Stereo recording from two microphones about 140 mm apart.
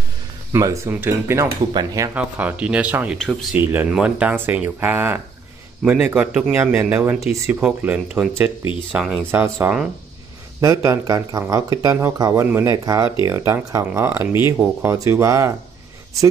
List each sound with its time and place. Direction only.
0.5 s speech: 25° right (ahead or behind)
1.7 s speech: 30° right (ahead or behind)
2.1 s speech: 10° right (ahead or behind)
9.3 s speech: 15° right (ahead or behind)